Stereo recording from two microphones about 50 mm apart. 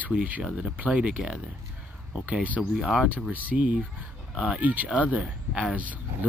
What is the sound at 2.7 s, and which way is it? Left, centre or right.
Speech, centre.